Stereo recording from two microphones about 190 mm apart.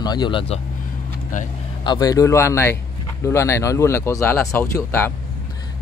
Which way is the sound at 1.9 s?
20° left (ahead or behind).